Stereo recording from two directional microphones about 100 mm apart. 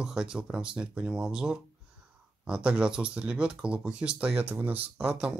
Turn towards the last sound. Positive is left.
turn(degrees=-15)  # may be behind; listen again after turning